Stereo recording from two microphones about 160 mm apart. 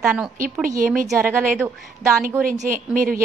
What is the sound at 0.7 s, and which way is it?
Speech, 60° right (ahead or behind).